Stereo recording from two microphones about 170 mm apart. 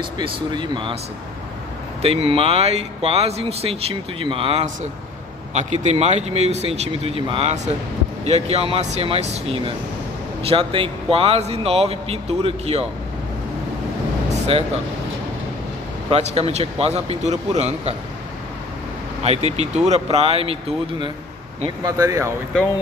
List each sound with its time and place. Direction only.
0.2 s speech: 30° right (ahead or behind)
2.0 s speech: 35° right (ahead or behind)
5.5 s speech: 45° right (ahead or behind)
14.3 s a sound: 40° right (ahead or behind)
16.1 s speech: 35° right (ahead or behind)
19.2 s speech: 40° right (ahead or behind)
21.8 s speech: 20° right (ahead or behind)